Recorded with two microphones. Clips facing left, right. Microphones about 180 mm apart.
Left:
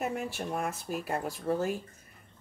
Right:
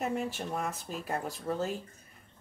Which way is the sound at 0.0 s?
5° left (ahead or behind).